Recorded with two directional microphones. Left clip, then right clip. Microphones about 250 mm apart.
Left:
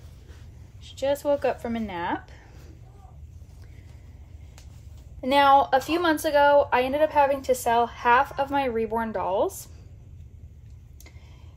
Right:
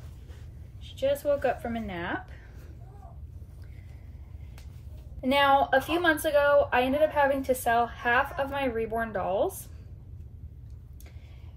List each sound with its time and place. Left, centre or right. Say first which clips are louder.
0.8 s a woman's voice: left 2 dB; left
5.2 s a woman's voice: left 4 dB; left